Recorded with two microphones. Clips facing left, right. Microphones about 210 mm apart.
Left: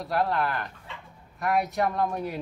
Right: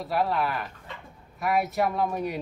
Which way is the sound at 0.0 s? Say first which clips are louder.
Even; centre (ahead or behind).